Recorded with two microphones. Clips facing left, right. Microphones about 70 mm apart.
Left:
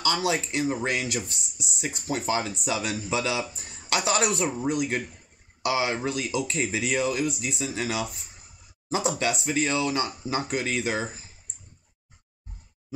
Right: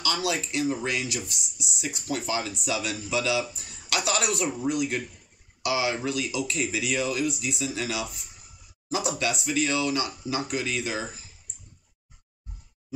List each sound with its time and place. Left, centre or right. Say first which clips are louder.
0.2 s speech: left 1 dB; left
5.6 s speech: left 1 dB; left
6.0 s speech: left 1 dB; left
7.0 s speech: left 1 dB; left
7.8 s speech: left 2 dB; left
8.8 s speech: left 2 dB; left